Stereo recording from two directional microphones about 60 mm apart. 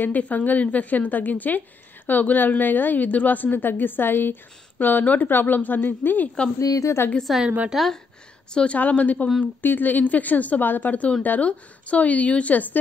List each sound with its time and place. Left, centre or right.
0.0 s a woman's voice: left
6.6 s a woman's voice: left
7.4 s a woman's voice: right
8.5 s a woman's voice: left